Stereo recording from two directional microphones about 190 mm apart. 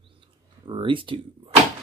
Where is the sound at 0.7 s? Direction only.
25° right (ahead or behind).